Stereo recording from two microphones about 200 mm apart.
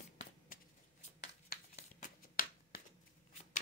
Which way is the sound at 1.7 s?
45° left (ahead or behind).